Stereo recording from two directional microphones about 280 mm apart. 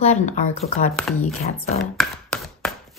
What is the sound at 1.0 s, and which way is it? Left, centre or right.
Speech, centre.